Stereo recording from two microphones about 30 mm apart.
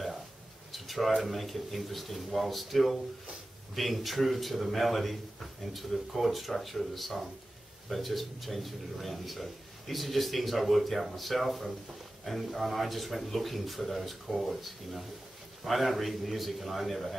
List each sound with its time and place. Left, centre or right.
0.7 s a man's voice: centre